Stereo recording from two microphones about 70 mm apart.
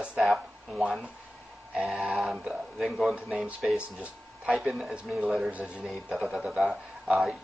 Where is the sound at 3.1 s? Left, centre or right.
Centre.